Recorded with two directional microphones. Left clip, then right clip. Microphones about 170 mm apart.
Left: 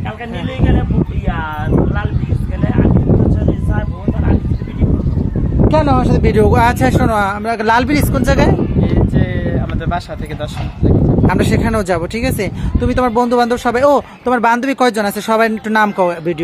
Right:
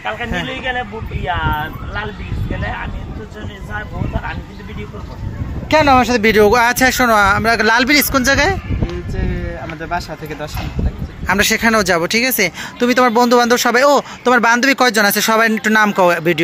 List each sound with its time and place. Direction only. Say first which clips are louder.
1.2 s speech: right 3 dB; 45° right (ahead or behind)
2.6 s a sound: left 7 dB; 40° right (ahead or behind)
5.7 s speech: right 4 dB; 10° right (ahead or behind)
6.3 s speech: even; 5° left (ahead or behind)
11.2 s speech: right 2 dB; centre (ahead or behind)